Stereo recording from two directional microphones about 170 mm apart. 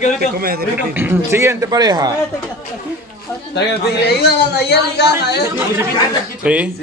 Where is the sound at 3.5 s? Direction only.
75° left (ahead or behind).